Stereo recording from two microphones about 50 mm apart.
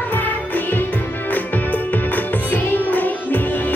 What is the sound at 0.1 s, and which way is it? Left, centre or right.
Music, left.